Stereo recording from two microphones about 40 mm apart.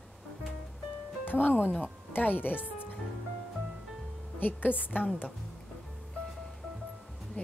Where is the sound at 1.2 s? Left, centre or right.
Left.